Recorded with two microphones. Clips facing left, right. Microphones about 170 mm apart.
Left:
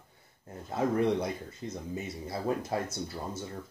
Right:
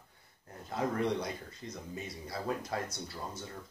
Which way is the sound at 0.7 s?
25° left (ahead or behind).